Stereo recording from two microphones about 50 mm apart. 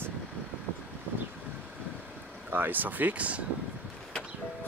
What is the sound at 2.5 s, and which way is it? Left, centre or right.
Speech, right.